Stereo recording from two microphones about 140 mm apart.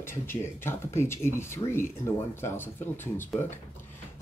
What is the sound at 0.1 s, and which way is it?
Speech, 20° left (ahead or behind).